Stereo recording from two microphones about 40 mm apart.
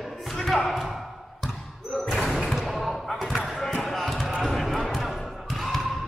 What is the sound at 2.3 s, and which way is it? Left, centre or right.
Basketball bounce, centre.